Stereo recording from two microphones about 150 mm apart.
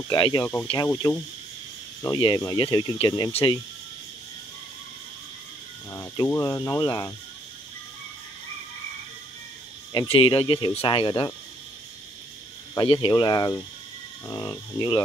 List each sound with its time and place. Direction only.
0.1 s speech: 25° left (ahead or behind)
2.1 s speech: 30° left (ahead or behind)
6.2 s speech: 15° left (ahead or behind)
10.0 s speech: 35° left (ahead or behind)
12.7 s speech: 35° left (ahead or behind)